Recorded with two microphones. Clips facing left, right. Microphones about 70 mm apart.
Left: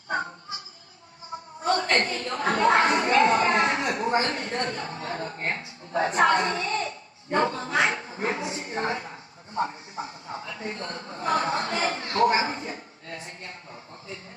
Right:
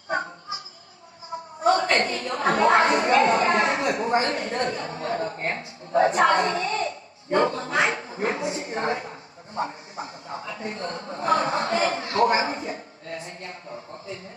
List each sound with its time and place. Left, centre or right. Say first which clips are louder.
1.6 s a woman's voice: right 3 dB; right